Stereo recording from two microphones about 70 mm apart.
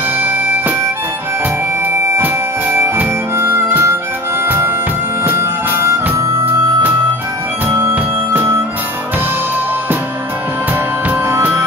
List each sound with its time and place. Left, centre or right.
0.2 s music: right
1.9 s music: right
2.2 s harmonica: right
4.5 s music: right
8.3 s music: right